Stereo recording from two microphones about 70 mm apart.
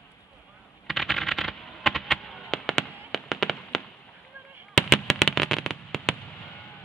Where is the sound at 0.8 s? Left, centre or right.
Centre.